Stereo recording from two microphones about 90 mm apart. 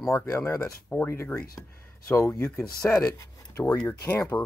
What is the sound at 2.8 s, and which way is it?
Speech, 10° left (ahead or behind).